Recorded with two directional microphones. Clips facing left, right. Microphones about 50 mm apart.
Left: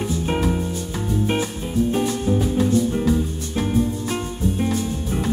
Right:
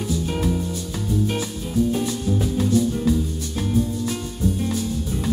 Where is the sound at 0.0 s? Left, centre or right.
Left.